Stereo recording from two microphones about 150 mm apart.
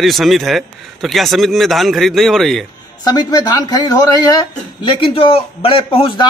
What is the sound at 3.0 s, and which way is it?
Speech, 25° left (ahead or behind).